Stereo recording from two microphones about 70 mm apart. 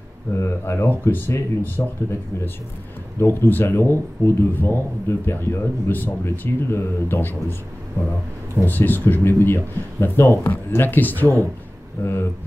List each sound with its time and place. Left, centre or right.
0.4 s speech: left
8.6 s speech: left